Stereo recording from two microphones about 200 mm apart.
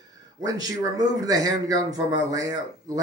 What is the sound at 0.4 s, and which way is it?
Speech, 20° right (ahead or behind).